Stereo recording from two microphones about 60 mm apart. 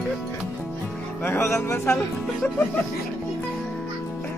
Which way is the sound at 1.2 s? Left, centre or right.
Left.